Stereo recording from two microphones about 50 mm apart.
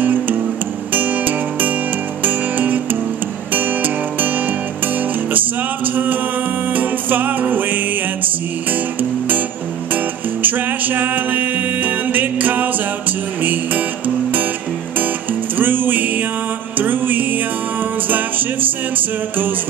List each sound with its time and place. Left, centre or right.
0.0 s music: right
6.7 s music: right
9.9 s music: right
15.5 s music: right